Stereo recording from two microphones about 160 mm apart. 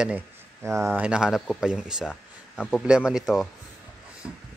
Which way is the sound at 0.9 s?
5° right (ahead or behind).